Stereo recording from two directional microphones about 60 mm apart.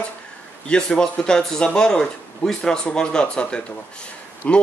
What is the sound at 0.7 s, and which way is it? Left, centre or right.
Speech, centre.